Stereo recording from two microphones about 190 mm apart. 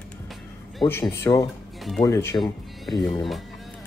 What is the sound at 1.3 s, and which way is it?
Speech, 15° left (ahead or behind).